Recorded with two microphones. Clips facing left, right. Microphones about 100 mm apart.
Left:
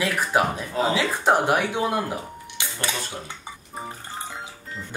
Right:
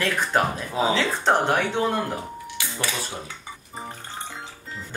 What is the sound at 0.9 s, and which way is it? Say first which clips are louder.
Speech: left 3 dB; 10° left (ahead or behind).